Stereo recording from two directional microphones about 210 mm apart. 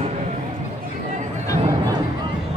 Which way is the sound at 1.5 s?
20° right (ahead or behind).